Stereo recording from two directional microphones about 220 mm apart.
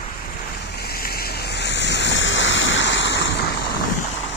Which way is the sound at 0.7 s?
45° left (ahead or behind).